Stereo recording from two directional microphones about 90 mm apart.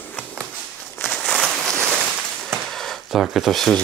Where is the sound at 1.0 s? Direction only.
5° left (ahead or behind).